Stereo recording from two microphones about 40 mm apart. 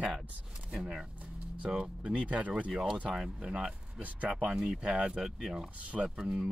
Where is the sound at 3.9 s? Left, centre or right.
Right.